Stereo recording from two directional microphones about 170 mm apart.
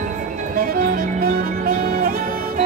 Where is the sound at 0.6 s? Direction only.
65° right (ahead or behind).